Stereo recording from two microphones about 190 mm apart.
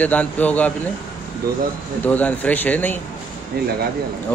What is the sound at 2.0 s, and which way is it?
Speech, 10° left (ahead or behind).